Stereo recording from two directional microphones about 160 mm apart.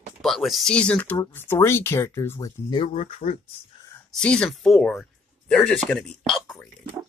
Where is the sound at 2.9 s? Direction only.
45° left (ahead or behind).